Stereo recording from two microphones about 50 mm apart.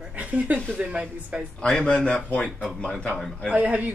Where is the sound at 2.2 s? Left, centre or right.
Left.